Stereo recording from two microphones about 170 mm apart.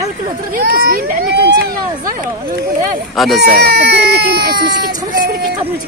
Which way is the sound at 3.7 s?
75° right (ahead or behind).